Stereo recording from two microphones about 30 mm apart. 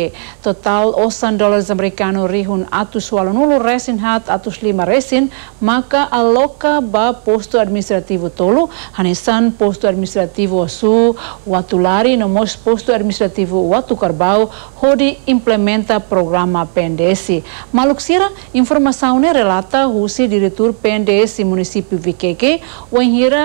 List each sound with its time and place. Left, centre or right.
0.0 s a woman's voice: left